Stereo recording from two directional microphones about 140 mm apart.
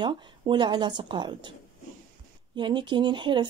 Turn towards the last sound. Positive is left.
turn(degrees=-35)  # may be behind; listen again after turning